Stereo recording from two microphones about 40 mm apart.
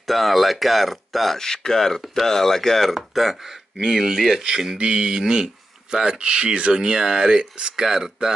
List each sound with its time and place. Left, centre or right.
0.0 s speech: centre
1.4 s speech: centre
3.7 s speech: centre
6.7 s speech: centre